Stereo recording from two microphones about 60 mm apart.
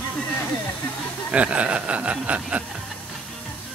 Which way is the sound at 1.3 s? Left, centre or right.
Right.